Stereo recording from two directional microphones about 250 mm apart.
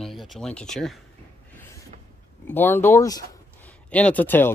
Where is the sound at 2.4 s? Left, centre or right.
Centre.